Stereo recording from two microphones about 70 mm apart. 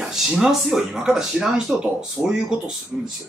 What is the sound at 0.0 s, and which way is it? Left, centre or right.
Speech, centre.